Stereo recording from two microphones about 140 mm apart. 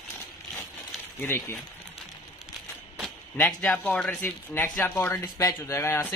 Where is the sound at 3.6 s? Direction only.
5° left (ahead or behind).